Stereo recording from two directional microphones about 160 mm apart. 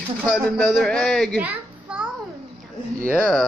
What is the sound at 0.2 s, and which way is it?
A man's voice, centre (ahead or behind).